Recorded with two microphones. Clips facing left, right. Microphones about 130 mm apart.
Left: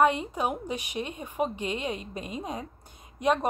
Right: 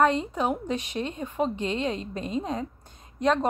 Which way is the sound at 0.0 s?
10° left (ahead or behind).